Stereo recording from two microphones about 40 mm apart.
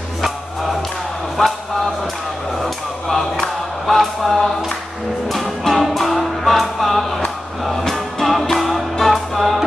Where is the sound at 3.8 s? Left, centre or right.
Centre.